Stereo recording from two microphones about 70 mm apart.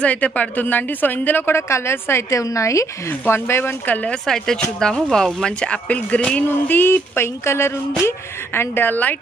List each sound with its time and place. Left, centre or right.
0.0 s a woman's voice: centre; by 2.9 s left
3.1 s a woman's voice: left
3.9 s a woman's voice: centre